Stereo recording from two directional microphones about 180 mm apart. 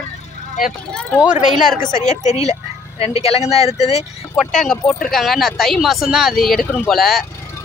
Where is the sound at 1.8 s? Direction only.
50° left (ahead or behind).